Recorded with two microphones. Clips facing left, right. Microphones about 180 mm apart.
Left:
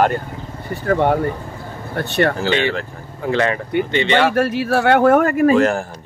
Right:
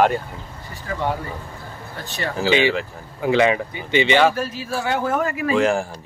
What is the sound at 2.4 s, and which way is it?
Speech, 5° right (ahead or behind).